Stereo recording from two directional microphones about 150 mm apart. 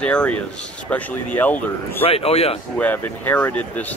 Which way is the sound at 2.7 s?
10° left (ahead or behind).